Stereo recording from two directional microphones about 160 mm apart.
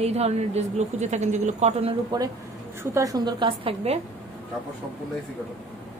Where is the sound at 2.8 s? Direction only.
20° right (ahead or behind); by 4.0 s 35° right (ahead or behind).